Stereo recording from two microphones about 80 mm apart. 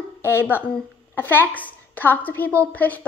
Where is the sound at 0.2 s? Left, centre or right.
Left.